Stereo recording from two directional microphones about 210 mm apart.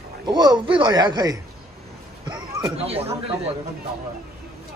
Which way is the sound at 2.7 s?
30° right (ahead or behind).